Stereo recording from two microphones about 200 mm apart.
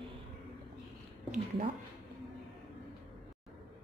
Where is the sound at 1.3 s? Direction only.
30° right (ahead or behind).